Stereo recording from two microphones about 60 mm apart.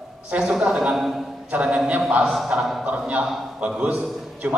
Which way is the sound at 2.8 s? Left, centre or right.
Right.